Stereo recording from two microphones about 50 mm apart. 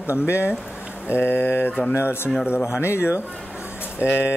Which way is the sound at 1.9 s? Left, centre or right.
Left.